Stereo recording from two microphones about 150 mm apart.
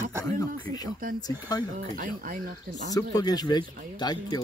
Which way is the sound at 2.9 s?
25° left (ahead or behind).